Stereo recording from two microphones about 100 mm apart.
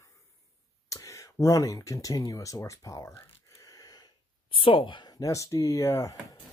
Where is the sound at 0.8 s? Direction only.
30° left (ahead or behind).